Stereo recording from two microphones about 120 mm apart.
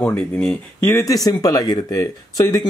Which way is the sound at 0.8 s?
25° left (ahead or behind).